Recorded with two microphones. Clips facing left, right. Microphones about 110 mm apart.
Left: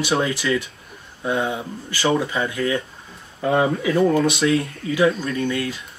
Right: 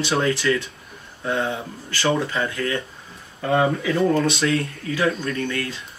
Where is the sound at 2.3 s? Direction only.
15° left (ahead or behind).